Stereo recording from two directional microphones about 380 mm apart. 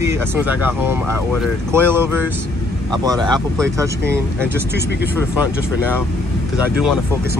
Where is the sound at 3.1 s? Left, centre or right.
Centre.